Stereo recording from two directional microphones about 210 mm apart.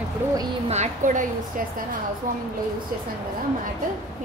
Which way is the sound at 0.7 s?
35° right (ahead or behind).